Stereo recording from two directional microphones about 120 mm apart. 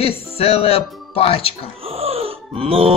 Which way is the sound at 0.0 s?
55° left (ahead or behind).